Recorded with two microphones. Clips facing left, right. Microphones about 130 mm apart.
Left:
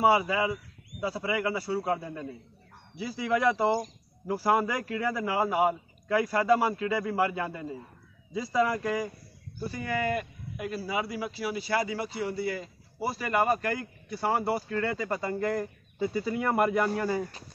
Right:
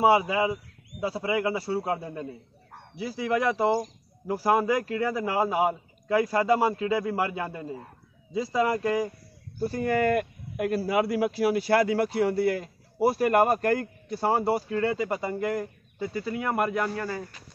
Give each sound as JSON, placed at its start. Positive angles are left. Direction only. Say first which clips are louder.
{"t": 0.0, "sound": "a man's voice", "louder": "right 2 dB", "side_deg": -20}
{"t": 9.6, "sound": "speech", "louder": "right 6 dB", "side_deg": -45}
{"t": 14.0, "sound": "a man's voice", "louder": "right 2 dB", "side_deg": -35}
{"t": 14.4, "sound": "a man's voice", "louder": "right 4 dB", "side_deg": -20}
{"t": 16.0, "sound": "speech", "louder": "left 1 dB", "side_deg": 0}